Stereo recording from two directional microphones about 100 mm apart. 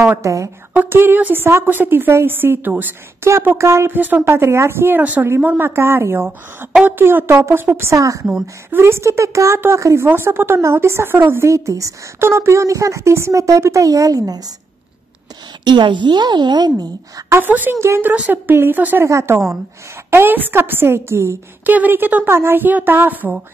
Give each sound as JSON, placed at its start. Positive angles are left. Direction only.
{"t": 0.0, "sound": "a woman's voice", "side_deg": -25}
{"t": 15.6, "sound": "a woman's voice", "side_deg": -50}
{"t": 17.3, "sound": "a woman's voice", "side_deg": -20}
{"t": 18.1, "sound": "a woman's voice", "side_deg": -15}